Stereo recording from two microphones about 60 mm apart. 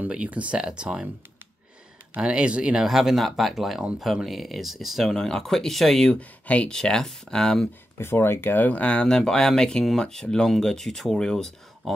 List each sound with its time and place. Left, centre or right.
0.1 s speech: right
2.1 s speech: centre
6.1 s speech: left
6.7 s speech: centre
8.0 s speech: left; by 12.0 s centre